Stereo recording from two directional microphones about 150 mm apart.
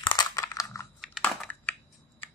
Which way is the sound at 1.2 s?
10° left (ahead or behind).